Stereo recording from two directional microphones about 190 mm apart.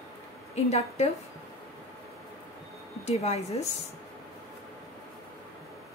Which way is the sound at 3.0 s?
35° left (ahead or behind).